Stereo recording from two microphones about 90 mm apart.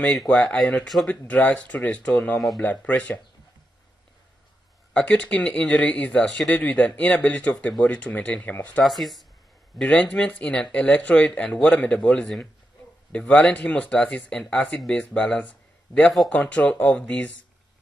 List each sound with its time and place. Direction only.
0.0 s speech: centre (ahead or behind)
0.3 s speech: 10° left (ahead or behind)
2.3 s speech: centre (ahead or behind)
2.6 s speech: 15° left (ahead or behind)
4.9 s speech: 15° left (ahead or behind)
6.5 s speech: 15° left (ahead or behind)
8.8 s speech: centre (ahead or behind)
10.0 s speech: 15° left (ahead or behind)